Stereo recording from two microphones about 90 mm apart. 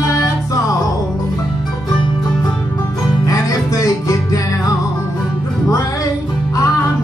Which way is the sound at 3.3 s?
40° left (ahead or behind).